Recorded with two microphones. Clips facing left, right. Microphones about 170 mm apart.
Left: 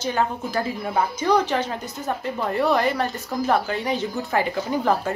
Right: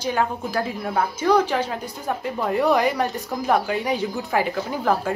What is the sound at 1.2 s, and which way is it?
A woman's voice, 10° right (ahead or behind).